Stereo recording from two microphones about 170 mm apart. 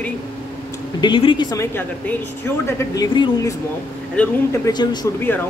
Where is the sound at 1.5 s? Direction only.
15° left (ahead or behind).